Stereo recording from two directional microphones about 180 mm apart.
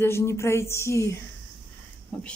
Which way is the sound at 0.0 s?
15° left (ahead or behind).